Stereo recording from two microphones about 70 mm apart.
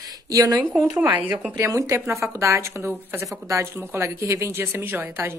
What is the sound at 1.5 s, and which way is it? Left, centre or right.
A woman's voice, right.